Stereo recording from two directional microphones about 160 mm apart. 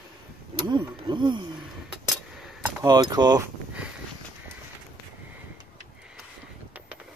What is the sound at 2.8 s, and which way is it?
Speech, 25° right (ahead or behind).